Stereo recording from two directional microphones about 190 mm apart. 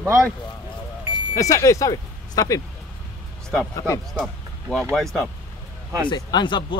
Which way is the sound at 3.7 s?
20° left (ahead or behind).